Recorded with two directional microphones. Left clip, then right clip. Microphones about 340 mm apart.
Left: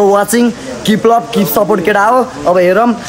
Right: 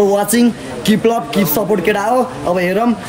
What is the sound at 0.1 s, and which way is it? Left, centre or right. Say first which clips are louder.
A man's voice: left 4 dB; centre.